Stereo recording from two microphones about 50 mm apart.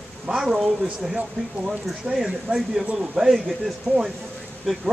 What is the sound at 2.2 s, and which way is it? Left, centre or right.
Speech, centre.